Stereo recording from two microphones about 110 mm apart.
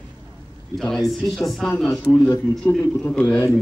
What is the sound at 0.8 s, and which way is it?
A man's voice, centre (ahead or behind).